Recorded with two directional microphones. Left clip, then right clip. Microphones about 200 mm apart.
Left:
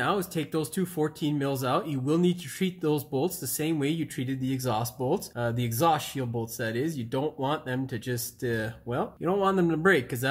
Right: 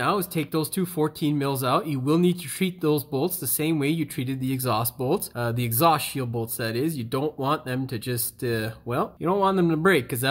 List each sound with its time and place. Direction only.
0.0 s speech: 30° right (ahead or behind)